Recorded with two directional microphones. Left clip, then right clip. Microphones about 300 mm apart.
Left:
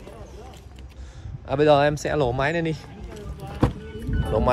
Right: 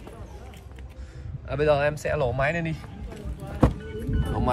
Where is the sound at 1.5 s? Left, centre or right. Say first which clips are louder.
Left 5 dB; centre.